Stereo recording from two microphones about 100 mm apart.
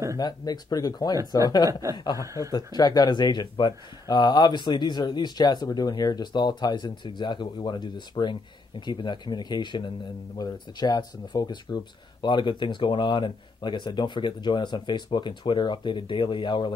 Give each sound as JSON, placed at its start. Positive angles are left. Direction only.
{"t": 0.2, "sound": "speech", "side_deg": 40}
{"t": 1.7, "sound": "speech", "side_deg": -30}
{"t": 2.5, "sound": "speech", "side_deg": 40}